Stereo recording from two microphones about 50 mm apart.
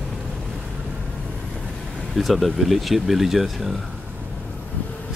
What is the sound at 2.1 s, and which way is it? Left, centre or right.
Speech, centre.